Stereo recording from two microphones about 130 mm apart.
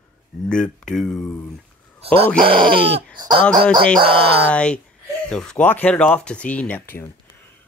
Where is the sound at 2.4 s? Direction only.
40° right (ahead or behind).